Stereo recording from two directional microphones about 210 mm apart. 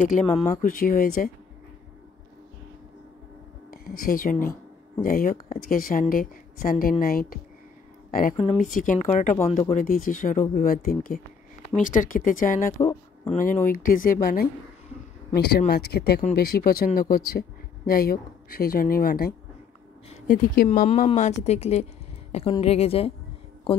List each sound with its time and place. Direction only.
0.1 s speech: 30° left (ahead or behind)
3.7 s speech: 45° left (ahead or behind)
12.7 s speech: 15° left (ahead or behind)
13.3 s a woman's voice: 40° left (ahead or behind)